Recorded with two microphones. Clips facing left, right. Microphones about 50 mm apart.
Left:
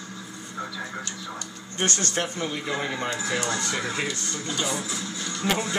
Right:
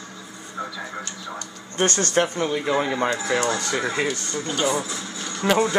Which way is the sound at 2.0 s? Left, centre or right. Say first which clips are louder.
Right 7 dB; right.